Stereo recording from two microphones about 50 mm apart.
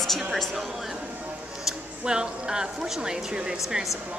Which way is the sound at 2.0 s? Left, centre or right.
Centre.